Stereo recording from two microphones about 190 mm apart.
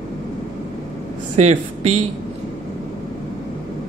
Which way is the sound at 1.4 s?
35° right (ahead or behind).